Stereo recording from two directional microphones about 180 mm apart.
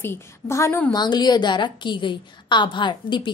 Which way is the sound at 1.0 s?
25° left (ahead or behind).